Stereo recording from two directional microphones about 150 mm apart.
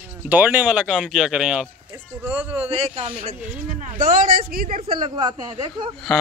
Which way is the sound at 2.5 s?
45° right (ahead or behind).